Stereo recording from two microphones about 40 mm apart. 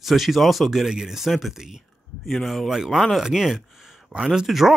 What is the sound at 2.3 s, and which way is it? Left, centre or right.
Speech, centre.